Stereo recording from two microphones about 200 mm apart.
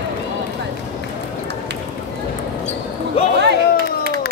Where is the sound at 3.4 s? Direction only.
55° right (ahead or behind).